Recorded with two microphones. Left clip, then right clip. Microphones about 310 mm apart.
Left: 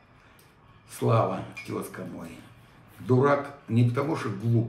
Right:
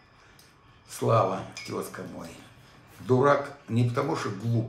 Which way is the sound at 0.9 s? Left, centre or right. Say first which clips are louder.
Right 1 dB; centre.